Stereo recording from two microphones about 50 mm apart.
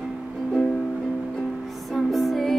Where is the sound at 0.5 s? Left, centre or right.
Centre.